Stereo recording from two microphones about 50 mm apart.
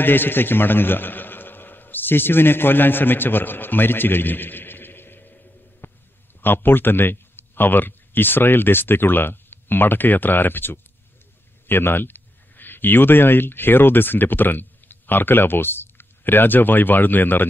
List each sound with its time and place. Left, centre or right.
0.0 s a man's voice: left